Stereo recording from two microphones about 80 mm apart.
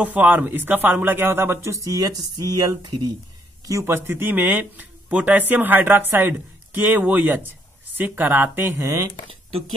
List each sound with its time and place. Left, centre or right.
0.0 s speech: right
3.8 s speech: right
8.8 s speech: right